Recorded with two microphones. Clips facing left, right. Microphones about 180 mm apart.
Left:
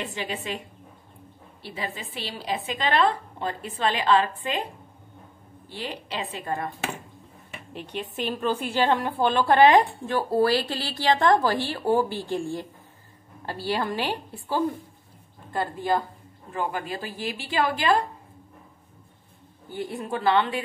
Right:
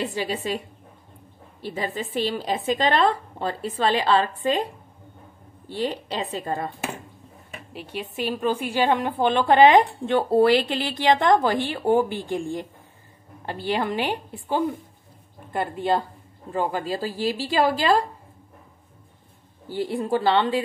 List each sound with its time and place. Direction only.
0.0 s a woman's voice: 35° right (ahead or behind)
1.6 s a woman's voice: 45° right (ahead or behind)
5.8 s a woman's voice: 40° right (ahead or behind)
6.4 s a woman's voice: 25° right (ahead or behind)
7.7 s a woman's voice: 5° right (ahead or behind); by 16.0 s 20° right (ahead or behind)
16.5 s a woman's voice: 35° right (ahead or behind)
19.7 s a woman's voice: 30° right (ahead or behind)